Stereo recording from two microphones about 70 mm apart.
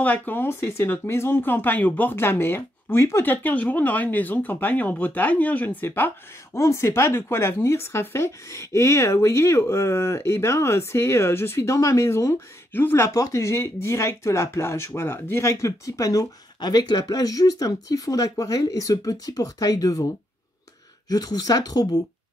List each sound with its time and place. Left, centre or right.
0.0 s speech: left
3.3 s speech: left
6.5 s speech: left
12.7 s speech: left
13.1 s speech: left
21.1 s speech: left